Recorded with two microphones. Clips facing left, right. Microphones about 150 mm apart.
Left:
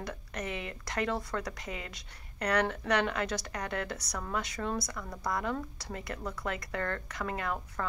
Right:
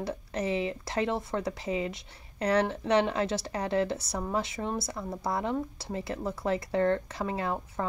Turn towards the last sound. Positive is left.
turn(degrees=-25)  # may be behind; listen again after turning